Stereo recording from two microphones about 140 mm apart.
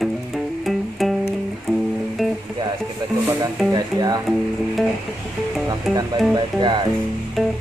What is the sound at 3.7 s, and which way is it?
Speech, 30° right (ahead or behind).